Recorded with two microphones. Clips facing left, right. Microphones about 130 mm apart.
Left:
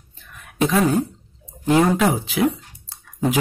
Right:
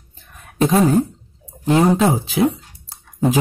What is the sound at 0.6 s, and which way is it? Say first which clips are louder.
Speech: right 3 dB; 35° right (ahead or behind).